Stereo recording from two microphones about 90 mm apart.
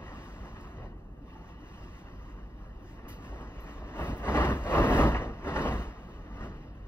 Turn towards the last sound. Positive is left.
turn(degrees=25)  # may be behind; listen again after turning